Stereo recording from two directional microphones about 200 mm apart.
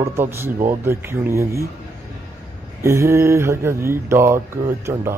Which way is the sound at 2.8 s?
15° right (ahead or behind).